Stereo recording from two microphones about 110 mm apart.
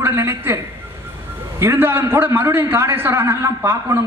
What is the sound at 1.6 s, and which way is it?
A man's voice, 20° right (ahead or behind).